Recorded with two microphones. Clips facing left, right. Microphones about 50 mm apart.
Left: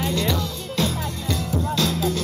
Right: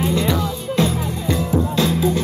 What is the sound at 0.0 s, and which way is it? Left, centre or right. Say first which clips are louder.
Music: right 4 dB; centre.